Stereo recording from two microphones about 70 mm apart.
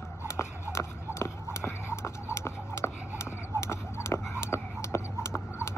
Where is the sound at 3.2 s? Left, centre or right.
Left.